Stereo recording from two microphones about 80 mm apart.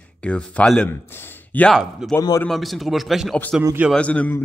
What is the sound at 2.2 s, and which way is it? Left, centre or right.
Speech, left.